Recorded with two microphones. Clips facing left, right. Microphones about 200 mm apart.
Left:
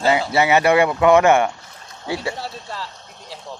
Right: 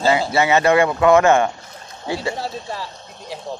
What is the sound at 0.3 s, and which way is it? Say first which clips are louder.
Speech: left 1 dB; 15° left (ahead or behind).